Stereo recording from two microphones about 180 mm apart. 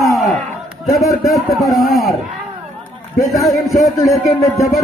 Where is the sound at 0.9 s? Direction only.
Centre (ahead or behind).